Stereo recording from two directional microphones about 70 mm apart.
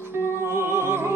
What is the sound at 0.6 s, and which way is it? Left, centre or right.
Music, right.